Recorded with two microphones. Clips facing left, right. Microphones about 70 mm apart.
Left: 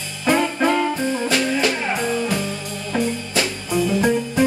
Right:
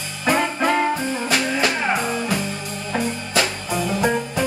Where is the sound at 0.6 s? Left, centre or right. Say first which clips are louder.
Left 1 dB; right.